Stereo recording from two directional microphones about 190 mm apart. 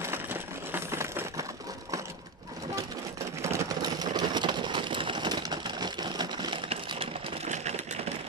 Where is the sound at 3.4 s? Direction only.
15° right (ahead or behind); by 7.7 s 35° right (ahead or behind).